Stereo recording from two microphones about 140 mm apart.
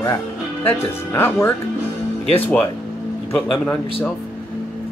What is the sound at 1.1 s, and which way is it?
Speech, 15° left (ahead or behind).